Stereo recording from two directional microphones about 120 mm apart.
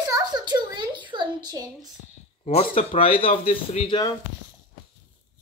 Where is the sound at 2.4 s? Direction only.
55° left (ahead or behind).